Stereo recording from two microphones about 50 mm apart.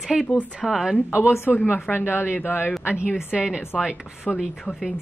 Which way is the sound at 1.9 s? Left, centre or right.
Left.